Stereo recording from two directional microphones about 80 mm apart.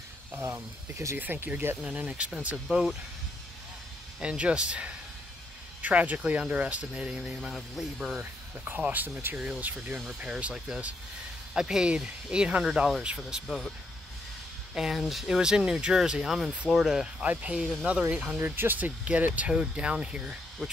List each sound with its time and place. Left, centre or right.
0.4 s speech: right
1.1 s speech: right
1.8 s speech: centre
4.2 s speech: centre
8.2 s speech: right; by 13.7 s centre
14.7 s speech: centre
17.2 s speech: centre
18.6 s speech: right